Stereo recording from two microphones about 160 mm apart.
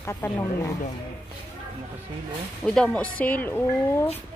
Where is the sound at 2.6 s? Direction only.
5° left (ahead or behind).